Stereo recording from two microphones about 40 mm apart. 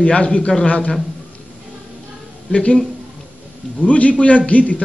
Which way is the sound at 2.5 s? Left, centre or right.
Left.